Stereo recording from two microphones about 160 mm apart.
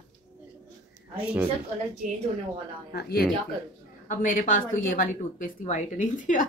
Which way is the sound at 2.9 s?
80° left.